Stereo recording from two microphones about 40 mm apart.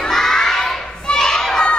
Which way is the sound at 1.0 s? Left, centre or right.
Centre.